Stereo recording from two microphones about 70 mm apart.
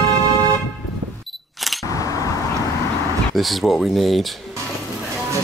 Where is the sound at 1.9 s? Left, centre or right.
Left.